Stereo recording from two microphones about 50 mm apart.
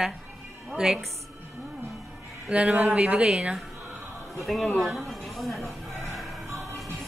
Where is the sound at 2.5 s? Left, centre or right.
Right.